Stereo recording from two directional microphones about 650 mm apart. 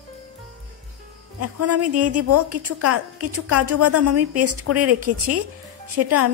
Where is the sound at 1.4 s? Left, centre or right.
Right.